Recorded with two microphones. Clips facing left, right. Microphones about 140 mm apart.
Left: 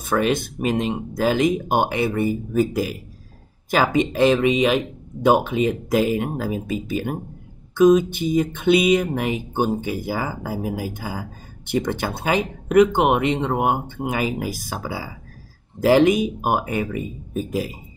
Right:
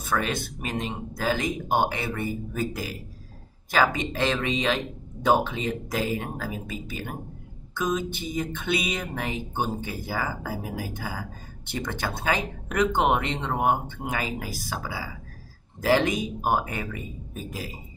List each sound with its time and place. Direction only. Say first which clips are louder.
0.1 s speech: left 7 dB; 20° left (ahead or behind)